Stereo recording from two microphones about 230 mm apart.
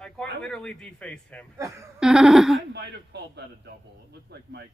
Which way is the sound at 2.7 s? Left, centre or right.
Right.